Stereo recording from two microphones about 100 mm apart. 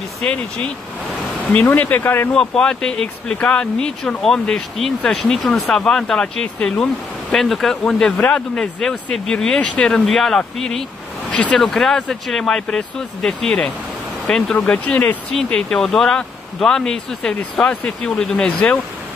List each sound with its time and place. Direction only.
0.2 s speech: 10° left (ahead or behind)
2.3 s speech: 10° left (ahead or behind)